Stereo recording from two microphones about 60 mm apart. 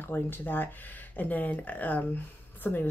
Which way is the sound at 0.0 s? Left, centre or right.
Left.